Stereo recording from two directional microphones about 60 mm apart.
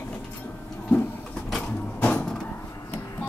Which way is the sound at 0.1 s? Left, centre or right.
Left.